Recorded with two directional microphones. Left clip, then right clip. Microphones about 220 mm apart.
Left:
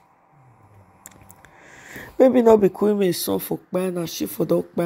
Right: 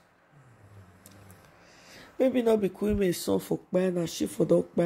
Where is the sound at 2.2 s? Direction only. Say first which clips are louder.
Left 10 dB; 30° left (ahead or behind).